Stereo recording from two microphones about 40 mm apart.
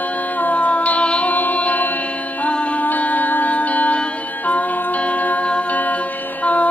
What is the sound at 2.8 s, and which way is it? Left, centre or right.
Music, left.